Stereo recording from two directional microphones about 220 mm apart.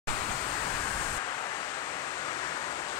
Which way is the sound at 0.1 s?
15° left (ahead or behind).